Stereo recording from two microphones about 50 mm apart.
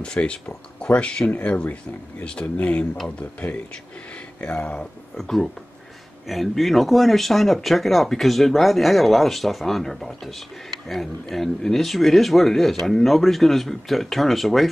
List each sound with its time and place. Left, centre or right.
0.0 s speech: centre
2.2 s speech: centre
5.1 s speech: centre